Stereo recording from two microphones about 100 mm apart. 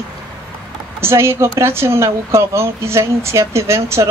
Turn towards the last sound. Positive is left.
turn(degrees=-25)  # may be behind; listen again after turning